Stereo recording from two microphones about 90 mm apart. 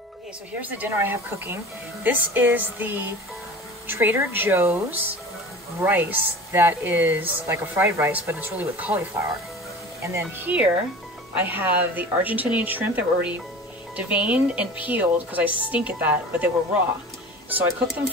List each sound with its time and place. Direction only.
0.6 s a woman's voice: 20° right (ahead or behind)
10.0 s speech: 30° right (ahead or behind)
10.4 s a woman's voice: 15° right (ahead or behind)
17.5 s a woman's voice: 20° right (ahead or behind)